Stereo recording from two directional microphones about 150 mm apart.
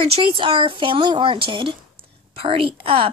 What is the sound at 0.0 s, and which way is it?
A woman's voice, 35° right (ahead or behind).